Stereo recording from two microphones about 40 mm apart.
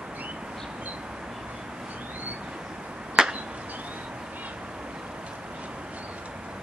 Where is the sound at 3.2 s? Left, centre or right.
Centre.